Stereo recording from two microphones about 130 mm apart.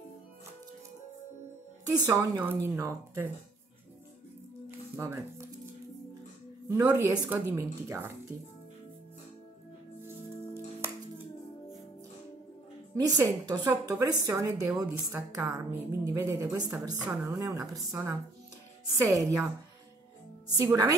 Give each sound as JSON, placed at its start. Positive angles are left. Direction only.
{"t": 1.9, "sound": "a woman's voice", "side_deg": -25}
{"t": 4.6, "sound": "music", "side_deg": -20}
{"t": 6.7, "sound": "a woman's voice", "side_deg": -25}
{"t": 12.9, "sound": "a woman's voice", "side_deg": -30}
{"t": 20.5, "sound": "a woman's voice", "side_deg": -25}